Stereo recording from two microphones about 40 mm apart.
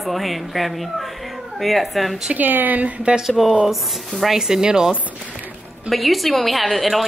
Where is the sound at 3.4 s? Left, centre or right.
Centre.